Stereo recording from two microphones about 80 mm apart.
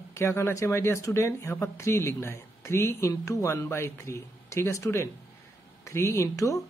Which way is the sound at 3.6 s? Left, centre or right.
Left.